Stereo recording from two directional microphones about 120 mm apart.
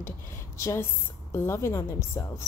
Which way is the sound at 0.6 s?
25° left (ahead or behind).